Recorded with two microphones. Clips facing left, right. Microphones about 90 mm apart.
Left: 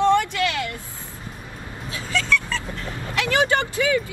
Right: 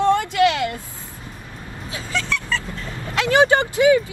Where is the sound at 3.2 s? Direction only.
20° right (ahead or behind).